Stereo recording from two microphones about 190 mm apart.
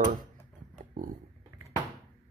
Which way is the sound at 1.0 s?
50° right (ahead or behind).